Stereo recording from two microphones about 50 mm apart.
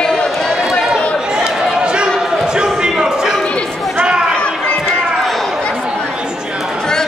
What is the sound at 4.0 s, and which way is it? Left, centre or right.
Chatter, centre.